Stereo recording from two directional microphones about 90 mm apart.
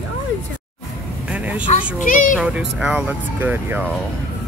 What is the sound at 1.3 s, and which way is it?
Vehicle, 15° right (ahead or behind).